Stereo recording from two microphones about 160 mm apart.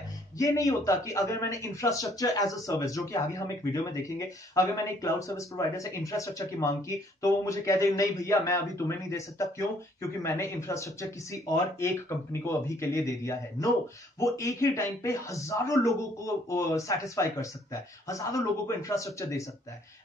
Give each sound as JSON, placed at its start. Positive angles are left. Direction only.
{"t": 0.4, "sound": "speech", "side_deg": 20}